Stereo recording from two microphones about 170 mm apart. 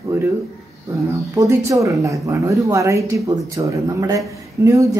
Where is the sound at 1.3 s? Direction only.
20° right (ahead or behind).